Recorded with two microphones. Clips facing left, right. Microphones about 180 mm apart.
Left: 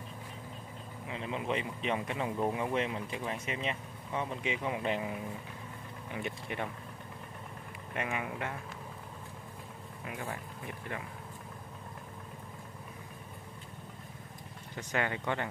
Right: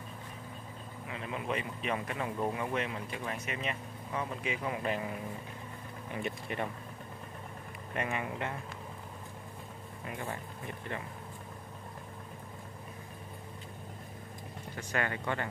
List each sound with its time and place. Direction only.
1.0 s speech: 25° left (ahead or behind)
6.4 s speech: centre (ahead or behind)
7.9 s speech: 5° left (ahead or behind)
14.8 s speech: 15° left (ahead or behind)